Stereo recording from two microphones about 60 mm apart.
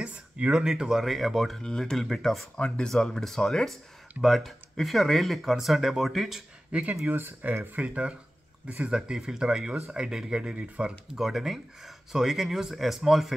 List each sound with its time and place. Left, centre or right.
0.0 s a sound: centre
0.6 s speech: centre
1.6 s speech: centre
2.5 s speech: centre
3.2 s speech: centre
6.7 s speech: centre
7.1 s speech: right
7.8 s speech: centre
11.1 s speech: centre